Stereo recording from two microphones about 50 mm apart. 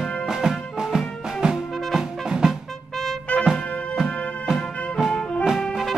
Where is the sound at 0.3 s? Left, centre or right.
Centre.